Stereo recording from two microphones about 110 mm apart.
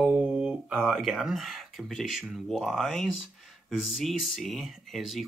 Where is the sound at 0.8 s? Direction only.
Centre (ahead or behind).